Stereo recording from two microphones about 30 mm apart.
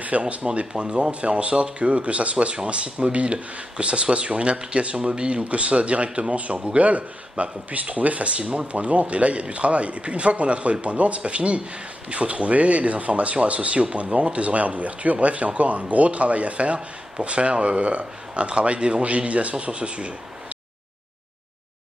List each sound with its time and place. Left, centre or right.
0.1 s speech: right
0.7 s speech: right
1.2 s speech: right
5.4 s speech: right
6.8 s speech: right
8.4 s speech: right
8.7 s speech: right
19.0 s speech: right